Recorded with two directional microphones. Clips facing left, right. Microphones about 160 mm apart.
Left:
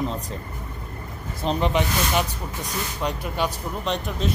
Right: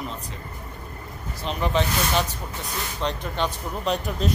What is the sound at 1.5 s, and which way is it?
Speech, 40° left (ahead or behind).